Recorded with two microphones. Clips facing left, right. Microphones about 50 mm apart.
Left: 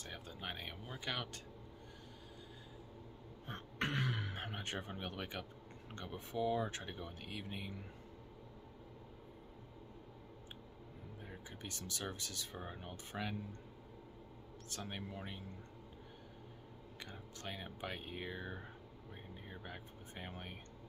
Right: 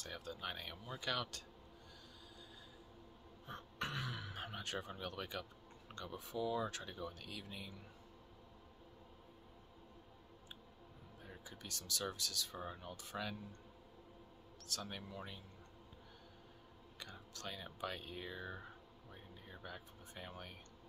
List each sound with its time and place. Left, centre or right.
0.0 s speech: left
3.4 s speech: left
5.1 s speech: left
11.1 s speech: left
14.7 s speech: left
17.1 s speech: left
19.1 s a sound: left